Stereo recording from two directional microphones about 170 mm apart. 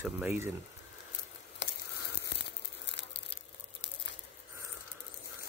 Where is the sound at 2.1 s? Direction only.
90° left.